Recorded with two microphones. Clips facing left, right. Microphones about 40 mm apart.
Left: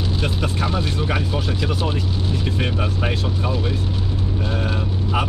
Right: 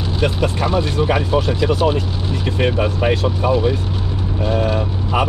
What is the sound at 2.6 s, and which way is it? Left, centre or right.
Speech, centre.